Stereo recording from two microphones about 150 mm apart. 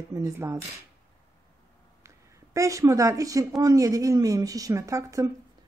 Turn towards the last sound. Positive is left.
turn(degrees=-20)  # may be behind; listen again after turning